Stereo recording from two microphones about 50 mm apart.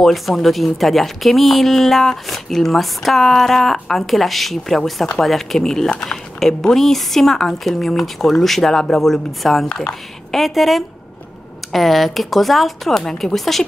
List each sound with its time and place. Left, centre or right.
0.0 s speech: centre
9.7 s speech: centre
10.3 s speech: centre